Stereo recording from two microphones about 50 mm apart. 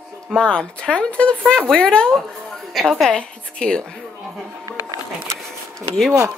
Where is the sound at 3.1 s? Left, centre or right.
Centre.